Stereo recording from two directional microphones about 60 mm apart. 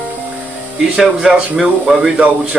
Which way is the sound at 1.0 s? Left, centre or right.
Centre.